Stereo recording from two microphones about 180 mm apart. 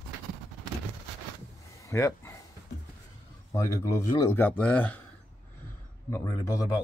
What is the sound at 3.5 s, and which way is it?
Speech, 15° left (ahead or behind).